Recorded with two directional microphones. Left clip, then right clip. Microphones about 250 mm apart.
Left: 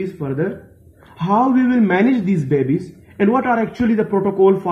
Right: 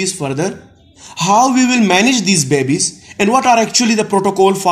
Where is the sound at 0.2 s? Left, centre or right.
Right.